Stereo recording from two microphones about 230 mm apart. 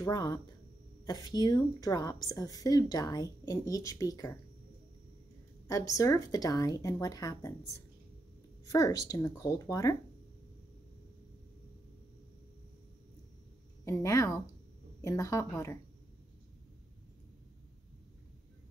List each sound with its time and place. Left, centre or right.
0.0 s a woman's voice: centre
5.7 s a woman's voice: centre
8.6 s a woman's voice: centre
13.8 s a woman's voice: centre